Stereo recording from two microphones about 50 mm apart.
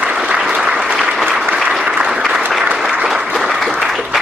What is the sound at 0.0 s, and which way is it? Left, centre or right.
Applause, right.